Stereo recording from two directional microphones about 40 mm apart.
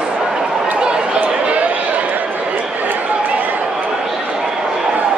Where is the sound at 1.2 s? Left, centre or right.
Right.